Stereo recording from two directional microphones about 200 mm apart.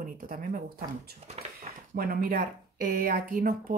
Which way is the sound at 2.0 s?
45° right (ahead or behind).